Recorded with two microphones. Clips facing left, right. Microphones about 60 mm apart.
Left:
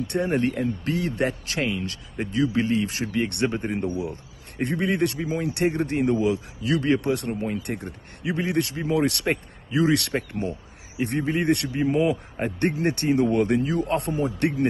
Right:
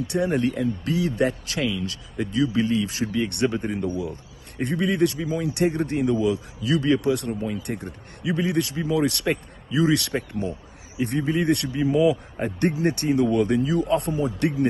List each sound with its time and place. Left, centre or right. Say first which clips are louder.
0.1 s a man's voice: right 1 dB; left